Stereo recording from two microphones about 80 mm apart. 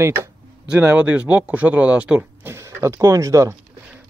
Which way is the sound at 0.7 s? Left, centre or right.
Centre.